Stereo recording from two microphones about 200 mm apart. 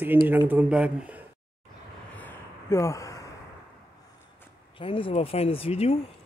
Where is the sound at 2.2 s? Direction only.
10° left (ahead or behind).